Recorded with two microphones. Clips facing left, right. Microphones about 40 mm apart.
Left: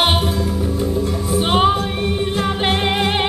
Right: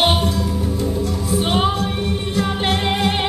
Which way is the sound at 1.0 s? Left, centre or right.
Left.